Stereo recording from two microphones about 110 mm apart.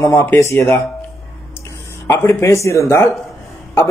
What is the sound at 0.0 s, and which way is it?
Speech, 25° left (ahead or behind).